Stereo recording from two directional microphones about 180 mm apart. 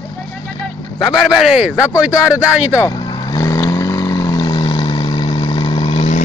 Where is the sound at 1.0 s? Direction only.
Centre (ahead or behind).